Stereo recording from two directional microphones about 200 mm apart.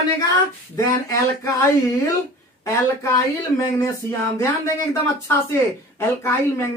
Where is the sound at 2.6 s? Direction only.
15° left (ahead or behind).